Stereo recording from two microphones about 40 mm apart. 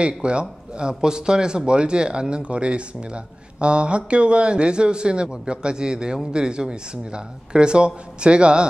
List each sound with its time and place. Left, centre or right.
0.0 s speech: right